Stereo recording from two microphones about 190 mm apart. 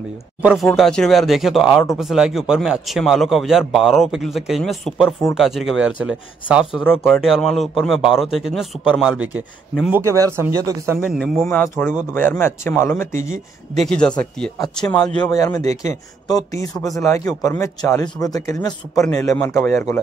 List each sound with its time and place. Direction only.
0.4 s speech: 5° right (ahead or behind)
11.1 s speech: centre (ahead or behind)
15.3 s speech: 15° left (ahead or behind)
15.6 s speech: 35° right (ahead or behind)
16.3 s speech: 20° left (ahead or behind)